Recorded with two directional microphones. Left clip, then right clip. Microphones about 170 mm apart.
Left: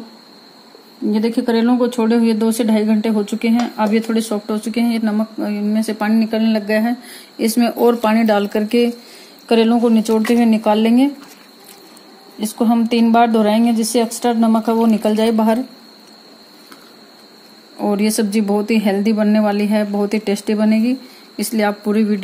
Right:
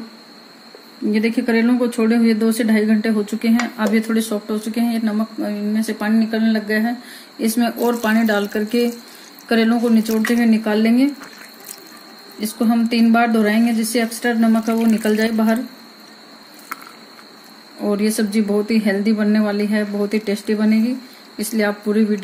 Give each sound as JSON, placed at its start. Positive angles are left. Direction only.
{"t": 1.1, "sound": "speech", "side_deg": 35}
{"t": 12.4, "sound": "speech", "side_deg": 45}
{"t": 17.7, "sound": "speech", "side_deg": 45}